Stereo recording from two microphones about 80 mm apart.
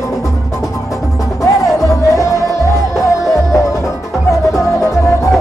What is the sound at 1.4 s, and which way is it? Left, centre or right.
Music, left.